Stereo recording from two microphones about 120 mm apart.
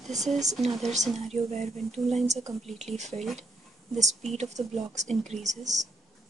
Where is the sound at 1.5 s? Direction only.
65° right (ahead or behind).